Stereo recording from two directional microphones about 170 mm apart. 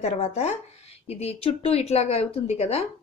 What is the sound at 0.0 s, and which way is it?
Speech, 40° left (ahead or behind).